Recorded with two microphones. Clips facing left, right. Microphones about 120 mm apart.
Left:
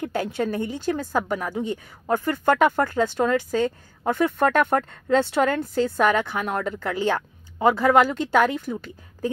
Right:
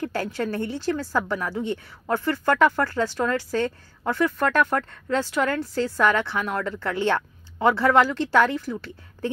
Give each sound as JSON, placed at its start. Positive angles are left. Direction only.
{"t": 0.0, "sound": "a woman's voice", "side_deg": 20}
{"t": 6.9, "sound": "a woman's voice", "side_deg": 10}